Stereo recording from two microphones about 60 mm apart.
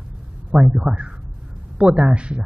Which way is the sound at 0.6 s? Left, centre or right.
Centre.